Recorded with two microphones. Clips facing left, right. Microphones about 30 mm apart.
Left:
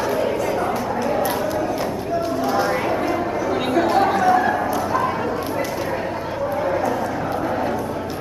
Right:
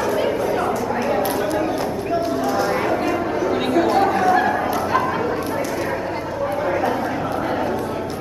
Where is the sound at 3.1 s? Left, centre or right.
Centre.